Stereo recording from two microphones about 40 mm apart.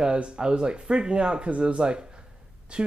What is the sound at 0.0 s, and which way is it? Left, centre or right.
Speech, right.